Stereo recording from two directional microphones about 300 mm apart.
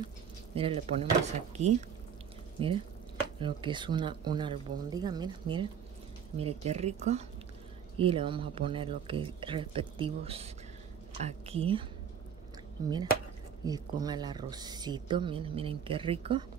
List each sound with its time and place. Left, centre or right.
0.6 s a woman's voice: centre
13.7 s a woman's voice: centre